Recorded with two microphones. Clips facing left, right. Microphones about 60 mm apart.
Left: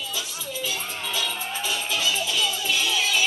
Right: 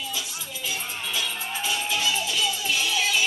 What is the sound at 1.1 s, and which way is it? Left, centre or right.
Music, centre.